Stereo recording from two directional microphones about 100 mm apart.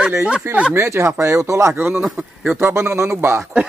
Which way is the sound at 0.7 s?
25° right (ahead or behind).